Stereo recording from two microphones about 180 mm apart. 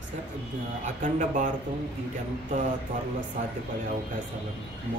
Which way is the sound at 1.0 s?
45° right (ahead or behind).